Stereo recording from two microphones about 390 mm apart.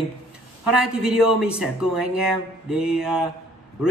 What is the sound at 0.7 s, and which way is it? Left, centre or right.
A man's voice, right.